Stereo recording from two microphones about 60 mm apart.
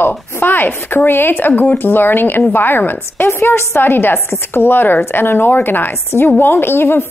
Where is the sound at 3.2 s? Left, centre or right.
Left.